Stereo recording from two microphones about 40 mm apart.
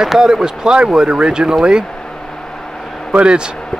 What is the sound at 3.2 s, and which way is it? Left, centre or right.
Speech, right.